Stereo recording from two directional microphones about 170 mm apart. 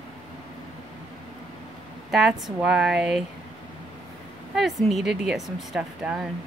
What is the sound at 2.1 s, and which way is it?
Speech, centre (ahead or behind).